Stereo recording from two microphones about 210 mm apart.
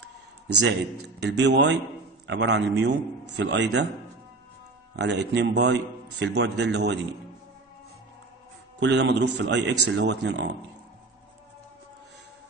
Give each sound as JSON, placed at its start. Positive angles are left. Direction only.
{"t": 0.7, "sound": "a man's voice", "side_deg": -55}
{"t": 4.9, "sound": "a man's voice", "side_deg": -55}
{"t": 8.7, "sound": "a man's voice", "side_deg": -55}